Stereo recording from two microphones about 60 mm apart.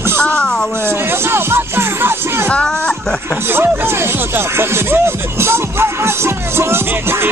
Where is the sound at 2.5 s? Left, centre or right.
Centre.